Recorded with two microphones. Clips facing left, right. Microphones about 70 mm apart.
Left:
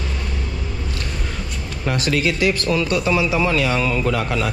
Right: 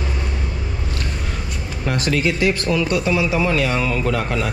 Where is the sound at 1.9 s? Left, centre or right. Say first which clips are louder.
Even; right.